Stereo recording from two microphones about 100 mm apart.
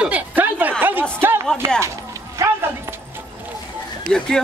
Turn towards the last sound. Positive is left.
turn(degrees=5)  # may be behind; listen again after turning